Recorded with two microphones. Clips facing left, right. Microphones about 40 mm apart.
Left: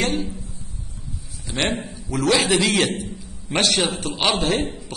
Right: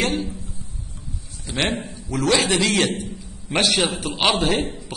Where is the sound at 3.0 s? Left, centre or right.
Centre.